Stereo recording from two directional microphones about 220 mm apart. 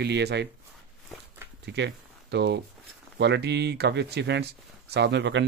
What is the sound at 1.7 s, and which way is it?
A man's voice, 50° right (ahead or behind).